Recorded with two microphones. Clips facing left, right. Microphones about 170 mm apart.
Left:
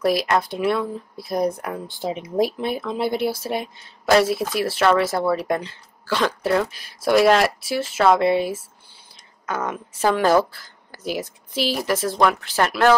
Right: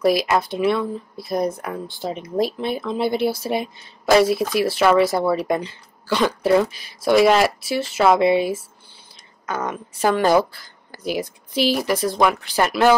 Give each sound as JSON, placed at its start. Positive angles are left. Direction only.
{"t": 0.0, "sound": "speech", "side_deg": 0}
{"t": 1.9, "sound": "speech", "side_deg": 20}
{"t": 12.2, "sound": "speech", "side_deg": -5}